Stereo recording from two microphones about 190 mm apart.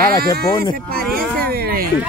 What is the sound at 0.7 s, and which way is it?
Speech, 50° right (ahead or behind).